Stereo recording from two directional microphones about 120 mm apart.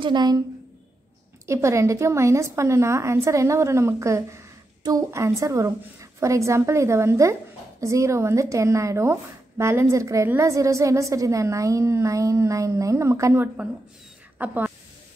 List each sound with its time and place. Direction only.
0.0 s a woman's voice: 35° right (ahead or behind)
1.4 s speech: 25° right (ahead or behind)